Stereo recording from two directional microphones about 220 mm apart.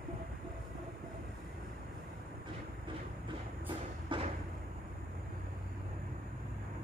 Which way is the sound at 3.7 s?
20° right (ahead or behind).